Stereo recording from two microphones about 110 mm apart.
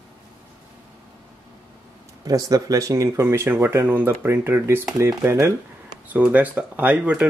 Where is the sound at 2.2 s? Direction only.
35° right (ahead or behind).